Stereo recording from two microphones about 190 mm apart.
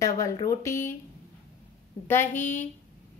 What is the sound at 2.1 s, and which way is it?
Speech, 10° left (ahead or behind).